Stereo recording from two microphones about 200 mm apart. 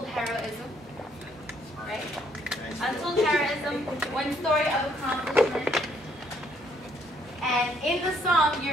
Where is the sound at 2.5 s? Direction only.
Centre (ahead or behind).